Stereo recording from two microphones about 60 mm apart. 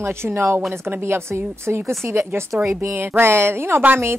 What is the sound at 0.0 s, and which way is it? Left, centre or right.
A woman's voice, right.